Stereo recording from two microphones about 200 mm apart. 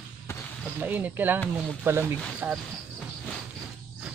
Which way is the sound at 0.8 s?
10° right (ahead or behind).